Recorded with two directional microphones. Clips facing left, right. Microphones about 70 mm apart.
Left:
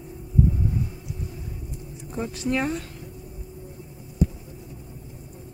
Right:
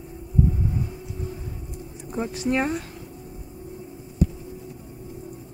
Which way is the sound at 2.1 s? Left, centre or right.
Centre.